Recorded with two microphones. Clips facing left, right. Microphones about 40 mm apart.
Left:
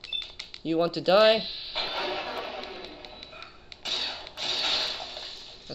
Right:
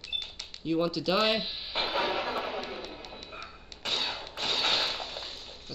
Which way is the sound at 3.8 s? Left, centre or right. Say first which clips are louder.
Right 1 dB; right.